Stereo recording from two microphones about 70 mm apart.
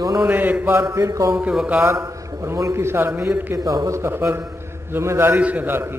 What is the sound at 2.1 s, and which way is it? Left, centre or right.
Speech, right.